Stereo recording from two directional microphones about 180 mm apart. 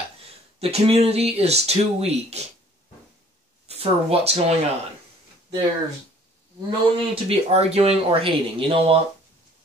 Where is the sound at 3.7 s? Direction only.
35° right (ahead or behind).